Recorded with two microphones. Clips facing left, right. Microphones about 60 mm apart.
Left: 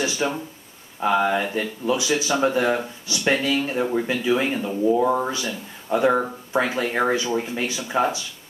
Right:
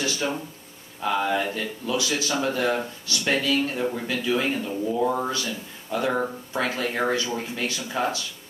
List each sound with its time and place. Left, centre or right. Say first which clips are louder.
0.0 s speech: left 3 dB; centre